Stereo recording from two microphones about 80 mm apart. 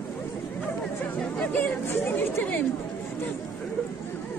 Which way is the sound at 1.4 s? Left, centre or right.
Left.